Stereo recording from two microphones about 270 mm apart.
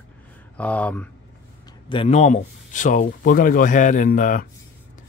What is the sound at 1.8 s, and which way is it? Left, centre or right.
Speech, left.